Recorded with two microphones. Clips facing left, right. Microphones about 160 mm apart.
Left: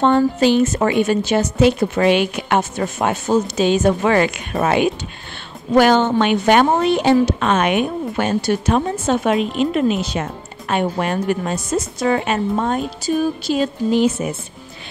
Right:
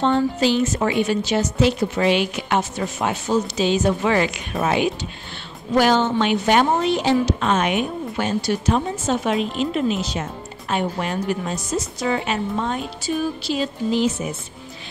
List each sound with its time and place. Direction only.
0.0 s a woman's voice: 55° left (ahead or behind)